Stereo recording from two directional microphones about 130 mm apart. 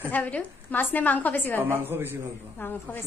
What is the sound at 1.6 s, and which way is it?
Speech, 15° right (ahead or behind).